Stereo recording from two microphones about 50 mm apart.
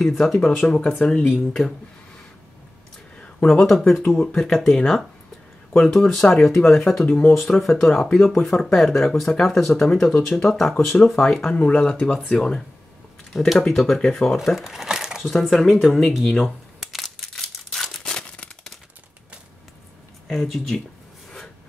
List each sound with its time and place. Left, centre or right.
0.2 s speech: centre
3.4 s speech: centre
11.5 s speech: left
11.8 s speech: centre
13.3 s speech: centre
14.3 s speech: centre
16.8 s scissors: centre
18.1 s a sound: centre
20.2 s speech: centre